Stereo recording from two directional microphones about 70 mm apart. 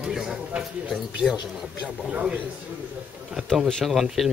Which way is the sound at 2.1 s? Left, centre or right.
Right.